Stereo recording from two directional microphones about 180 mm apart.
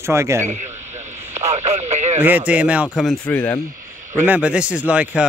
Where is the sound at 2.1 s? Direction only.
10° right (ahead or behind); by 3.5 s 5° left (ahead or behind).